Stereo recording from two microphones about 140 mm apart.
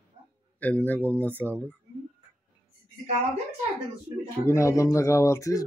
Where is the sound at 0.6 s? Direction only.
10° left (ahead or behind).